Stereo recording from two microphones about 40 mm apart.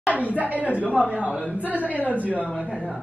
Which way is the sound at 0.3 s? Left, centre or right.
Right.